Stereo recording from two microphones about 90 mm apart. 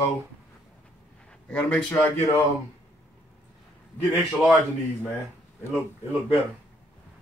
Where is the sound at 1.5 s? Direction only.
15° left (ahead or behind).